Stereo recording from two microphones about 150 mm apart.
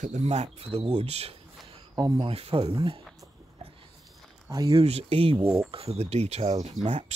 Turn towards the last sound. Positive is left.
turn(degrees=-50)  # may be behind; listen again after turning